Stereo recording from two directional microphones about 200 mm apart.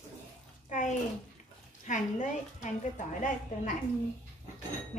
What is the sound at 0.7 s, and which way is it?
Bathtub, 40° left (ahead or behind).